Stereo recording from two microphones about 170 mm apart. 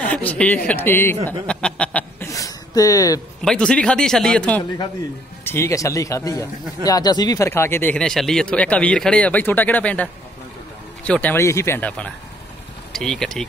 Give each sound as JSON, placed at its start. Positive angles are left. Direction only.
{"t": 0.1, "sound": "speech", "side_deg": 10}
{"t": 1.5, "sound": "a sound", "side_deg": 5}
{"t": 3.4, "sound": "speech", "side_deg": 5}
{"t": 11.1, "sound": "speech", "side_deg": 10}